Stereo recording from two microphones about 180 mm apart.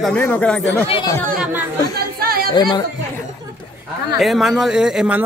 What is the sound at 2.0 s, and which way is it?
Chatter, 60° right (ahead or behind).